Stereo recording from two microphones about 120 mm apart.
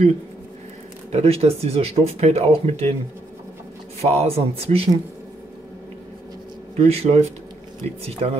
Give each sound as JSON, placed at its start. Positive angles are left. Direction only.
{"t": 1.1, "sound": "speech", "side_deg": -60}
{"t": 4.0, "sound": "speech", "side_deg": -60}
{"t": 6.8, "sound": "speech", "side_deg": -60}